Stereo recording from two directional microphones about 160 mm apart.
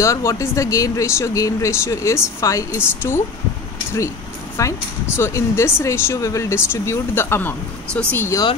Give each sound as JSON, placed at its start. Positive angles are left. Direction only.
{"t": 0.0, "sound": "speech", "side_deg": 20}
{"t": 4.6, "sound": "speech", "side_deg": 15}